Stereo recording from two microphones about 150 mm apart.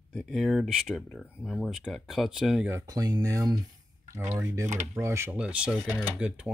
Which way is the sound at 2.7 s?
20° right (ahead or behind).